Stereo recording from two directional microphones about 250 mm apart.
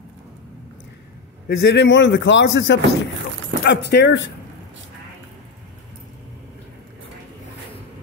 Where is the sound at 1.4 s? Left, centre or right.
Left.